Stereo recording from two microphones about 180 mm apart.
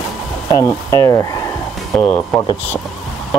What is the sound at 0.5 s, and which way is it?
Speech, 15° left (ahead or behind).